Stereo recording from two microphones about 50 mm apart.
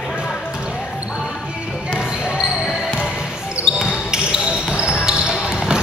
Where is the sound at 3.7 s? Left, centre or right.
Centre.